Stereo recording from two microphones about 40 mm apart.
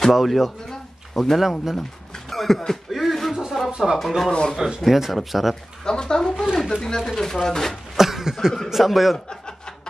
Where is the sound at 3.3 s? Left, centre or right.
Centre.